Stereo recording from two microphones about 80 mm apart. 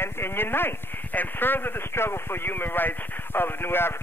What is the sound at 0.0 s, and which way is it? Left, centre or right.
Speech, left.